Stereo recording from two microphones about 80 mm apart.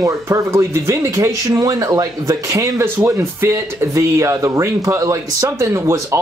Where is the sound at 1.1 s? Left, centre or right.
Right.